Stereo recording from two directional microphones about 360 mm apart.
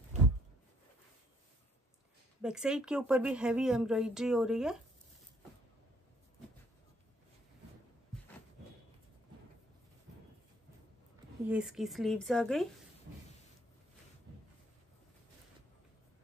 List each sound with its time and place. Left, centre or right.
2.4 s a woman's voice: centre
11.4 s a woman's voice: centre